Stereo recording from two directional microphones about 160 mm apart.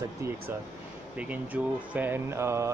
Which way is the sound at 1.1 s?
10° right (ahead or behind).